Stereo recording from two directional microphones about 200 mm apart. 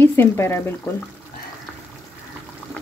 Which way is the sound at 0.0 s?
10° left (ahead or behind).